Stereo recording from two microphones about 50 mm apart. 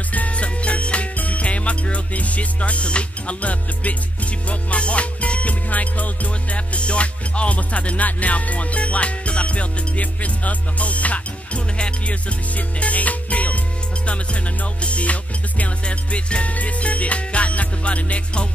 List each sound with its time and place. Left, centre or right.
0.1 s music: left